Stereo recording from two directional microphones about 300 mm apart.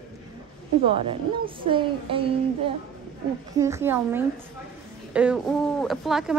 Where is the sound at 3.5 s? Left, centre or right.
Centre.